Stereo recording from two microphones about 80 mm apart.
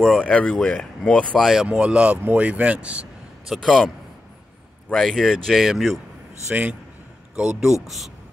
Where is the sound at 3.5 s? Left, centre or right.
Centre.